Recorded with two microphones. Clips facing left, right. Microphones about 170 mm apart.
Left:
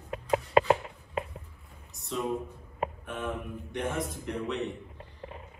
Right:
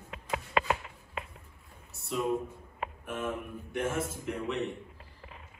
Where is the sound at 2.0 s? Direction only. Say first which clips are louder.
Right 1 dB; centre (ahead or behind).